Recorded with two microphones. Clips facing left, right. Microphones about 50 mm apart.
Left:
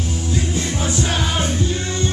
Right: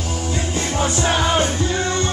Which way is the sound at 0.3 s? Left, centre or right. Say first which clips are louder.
Left 1 dB; right.